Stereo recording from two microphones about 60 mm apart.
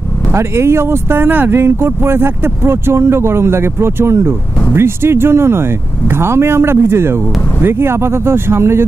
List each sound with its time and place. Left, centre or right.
0.3 s speech: right